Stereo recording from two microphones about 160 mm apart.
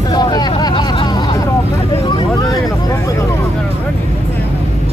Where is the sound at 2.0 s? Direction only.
25° left (ahead or behind).